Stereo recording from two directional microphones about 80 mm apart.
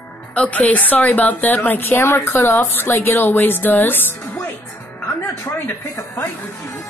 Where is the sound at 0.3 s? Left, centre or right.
Centre.